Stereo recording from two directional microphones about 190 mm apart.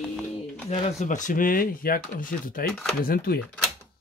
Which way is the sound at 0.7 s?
35° left (ahead or behind).